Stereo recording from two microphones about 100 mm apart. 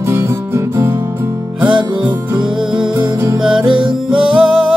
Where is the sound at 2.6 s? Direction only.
10° right (ahead or behind).